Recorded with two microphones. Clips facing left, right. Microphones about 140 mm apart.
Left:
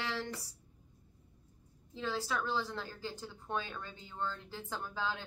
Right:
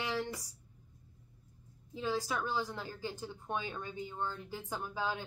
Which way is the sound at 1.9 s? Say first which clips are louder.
Right 2 dB; 15° right (ahead or behind).